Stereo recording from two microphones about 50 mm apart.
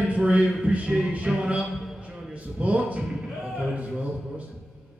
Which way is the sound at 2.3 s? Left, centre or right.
Right.